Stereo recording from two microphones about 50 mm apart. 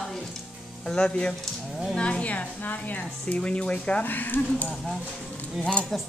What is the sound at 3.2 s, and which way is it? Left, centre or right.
Speech, left.